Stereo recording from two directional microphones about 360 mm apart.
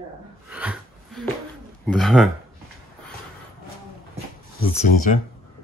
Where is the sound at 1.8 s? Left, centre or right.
Centre.